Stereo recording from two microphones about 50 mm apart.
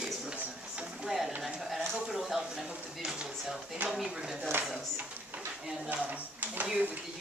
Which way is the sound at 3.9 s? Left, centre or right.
Centre.